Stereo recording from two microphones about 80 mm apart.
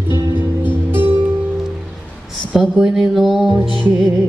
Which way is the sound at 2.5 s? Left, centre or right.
Centre.